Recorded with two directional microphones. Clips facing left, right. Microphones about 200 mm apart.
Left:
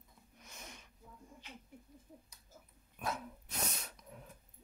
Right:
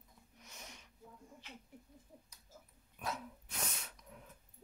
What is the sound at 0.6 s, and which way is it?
Sniff, 50° left (ahead or behind).